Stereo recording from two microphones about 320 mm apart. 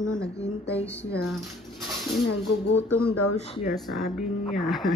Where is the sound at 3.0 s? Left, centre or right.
Left.